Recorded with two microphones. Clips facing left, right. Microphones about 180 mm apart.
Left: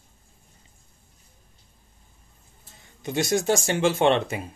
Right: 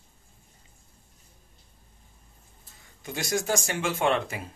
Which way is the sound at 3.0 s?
25° left (ahead or behind).